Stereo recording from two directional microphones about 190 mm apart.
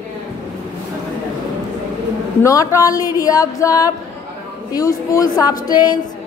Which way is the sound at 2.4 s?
15° left (ahead or behind).